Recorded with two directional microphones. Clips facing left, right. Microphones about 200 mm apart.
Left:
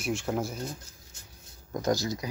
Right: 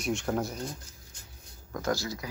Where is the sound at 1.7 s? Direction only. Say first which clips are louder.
Left 3 dB; 20° left (ahead or behind).